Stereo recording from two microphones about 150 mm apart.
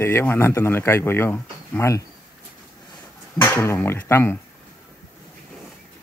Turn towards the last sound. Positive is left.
turn(degrees=15)  # may be behind; listen again after turning